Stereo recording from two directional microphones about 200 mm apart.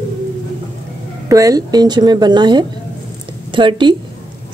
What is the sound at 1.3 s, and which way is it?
Speech, 15° right (ahead or behind).